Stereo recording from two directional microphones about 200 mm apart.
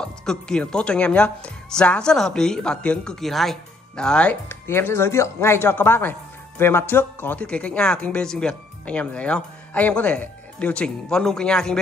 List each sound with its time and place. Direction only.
0.0 s a woman's voice: 5° left (ahead or behind)